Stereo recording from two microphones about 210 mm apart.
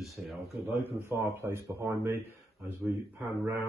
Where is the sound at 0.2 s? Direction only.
5° right (ahead or behind).